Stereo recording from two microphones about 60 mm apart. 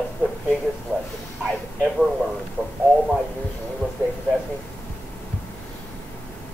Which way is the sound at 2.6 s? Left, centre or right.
Right.